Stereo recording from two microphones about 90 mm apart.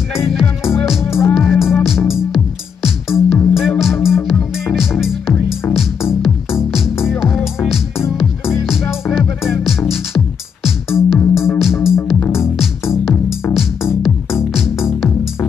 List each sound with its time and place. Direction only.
0.2 s music: 5° right (ahead or behind)